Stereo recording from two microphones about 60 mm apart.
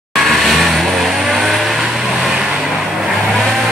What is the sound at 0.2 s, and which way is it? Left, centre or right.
Vehicle, centre.